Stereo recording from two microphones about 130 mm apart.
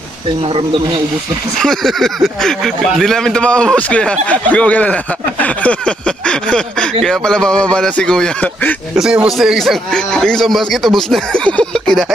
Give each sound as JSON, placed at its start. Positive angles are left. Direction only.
{"t": 1.6, "sound": "speech", "side_deg": 5}
{"t": 8.9, "sound": "a man's voice", "side_deg": -5}